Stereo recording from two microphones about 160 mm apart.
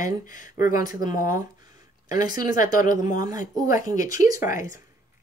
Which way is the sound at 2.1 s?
25° right (ahead or behind).